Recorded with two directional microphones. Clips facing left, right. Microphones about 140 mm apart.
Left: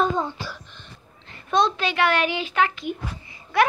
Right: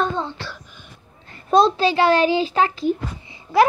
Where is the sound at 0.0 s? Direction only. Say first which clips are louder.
Even; 10° left (ahead or behind).